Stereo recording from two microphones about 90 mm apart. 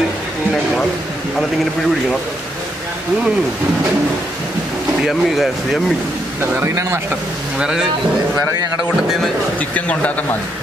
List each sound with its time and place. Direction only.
5.0 s speech: 5° right (ahead or behind)
6.6 s speech: 30° right (ahead or behind)
7.5 s speech: 10° right (ahead or behind)
9.8 s speech: 15° left (ahead or behind)